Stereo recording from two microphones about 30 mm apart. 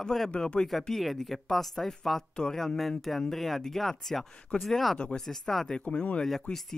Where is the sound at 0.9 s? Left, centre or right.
Centre.